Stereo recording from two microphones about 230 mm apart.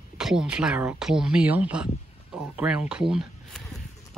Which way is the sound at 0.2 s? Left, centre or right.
Centre.